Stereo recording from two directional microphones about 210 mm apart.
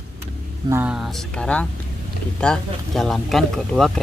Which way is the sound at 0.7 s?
10° right (ahead or behind).